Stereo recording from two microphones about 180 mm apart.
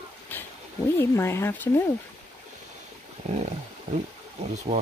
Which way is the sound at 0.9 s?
15° left (ahead or behind).